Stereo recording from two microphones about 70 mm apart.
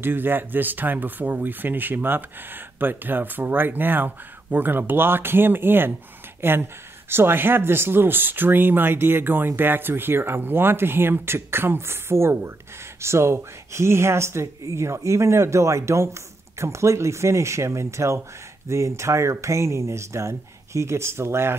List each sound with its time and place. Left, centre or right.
0.0 s speech: right